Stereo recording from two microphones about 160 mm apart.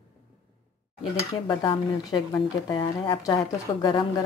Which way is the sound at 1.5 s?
30° left (ahead or behind).